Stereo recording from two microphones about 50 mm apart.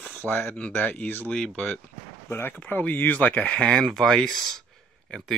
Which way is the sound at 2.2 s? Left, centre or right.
Left.